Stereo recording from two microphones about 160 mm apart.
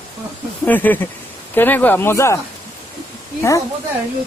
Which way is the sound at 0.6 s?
10° left (ahead or behind).